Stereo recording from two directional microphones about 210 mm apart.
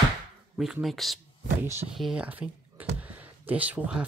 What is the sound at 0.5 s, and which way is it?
Speech, centre (ahead or behind).